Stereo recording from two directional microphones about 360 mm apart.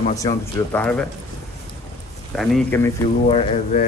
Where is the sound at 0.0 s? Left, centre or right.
Centre.